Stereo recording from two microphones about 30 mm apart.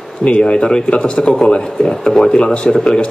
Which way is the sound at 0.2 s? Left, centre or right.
Left.